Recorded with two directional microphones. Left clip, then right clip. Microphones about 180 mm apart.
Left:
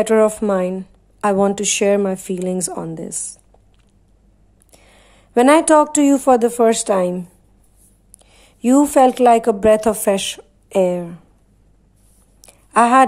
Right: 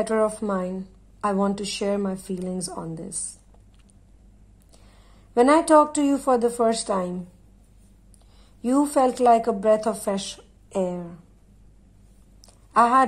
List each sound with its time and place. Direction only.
0.0 s speech: 25° left (ahead or behind)
4.7 s speech: 20° left (ahead or behind)
8.5 s speech: 30° left (ahead or behind)
12.4 s a sound: 20° left (ahead or behind)